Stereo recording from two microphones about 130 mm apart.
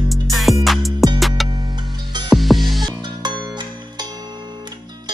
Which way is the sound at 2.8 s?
35° right (ahead or behind).